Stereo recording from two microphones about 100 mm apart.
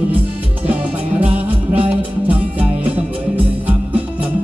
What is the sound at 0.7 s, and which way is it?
Music, 15° right (ahead or behind).